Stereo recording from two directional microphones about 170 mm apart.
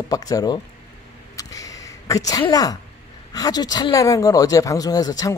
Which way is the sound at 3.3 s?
25° left (ahead or behind).